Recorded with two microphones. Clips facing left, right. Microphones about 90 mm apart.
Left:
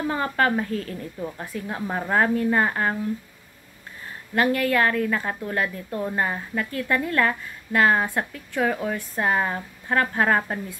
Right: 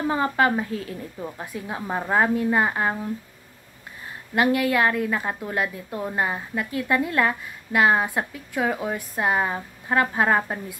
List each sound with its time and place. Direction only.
0.0 s a woman's voice: 20° right (ahead or behind)
4.4 s a woman's voice: 15° right (ahead or behind)